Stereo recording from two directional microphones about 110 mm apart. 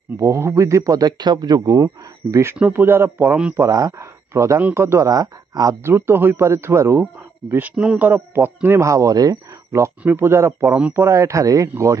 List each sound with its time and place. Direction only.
0.2 s speech: 25° right (ahead or behind)
2.5 s speech: 15° right (ahead or behind); by 5.8 s 35° right (ahead or behind)
5.9 s speech: 20° right (ahead or behind)
8.6 s speech: 25° right (ahead or behind)